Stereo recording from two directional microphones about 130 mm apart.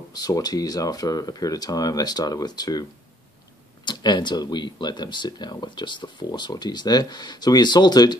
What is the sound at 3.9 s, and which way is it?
Speech, 35° left (ahead or behind).